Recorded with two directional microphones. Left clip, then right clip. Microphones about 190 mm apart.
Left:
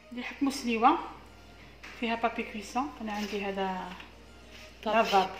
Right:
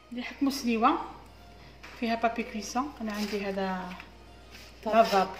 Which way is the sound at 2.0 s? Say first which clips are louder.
Right 2 dB; 10° right (ahead or behind).